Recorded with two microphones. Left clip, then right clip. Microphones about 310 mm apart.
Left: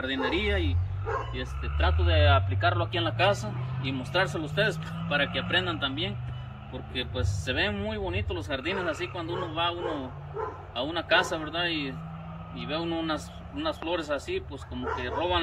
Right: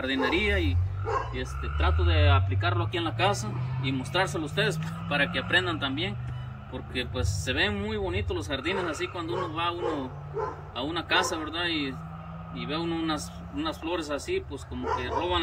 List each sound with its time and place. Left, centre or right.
0.0 s speech: centre
10.8 s speech: centre